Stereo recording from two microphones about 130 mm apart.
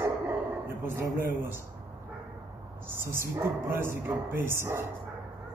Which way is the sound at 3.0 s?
20° right (ahead or behind).